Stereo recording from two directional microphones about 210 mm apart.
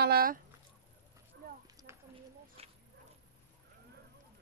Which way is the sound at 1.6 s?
15° right (ahead or behind).